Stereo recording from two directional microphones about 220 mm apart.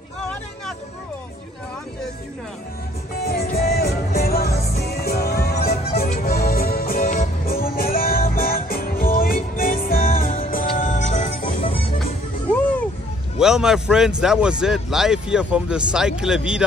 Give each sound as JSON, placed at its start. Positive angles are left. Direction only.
{"t": 3.2, "sound": "music", "side_deg": 45}
{"t": 13.4, "sound": "speech", "side_deg": 0}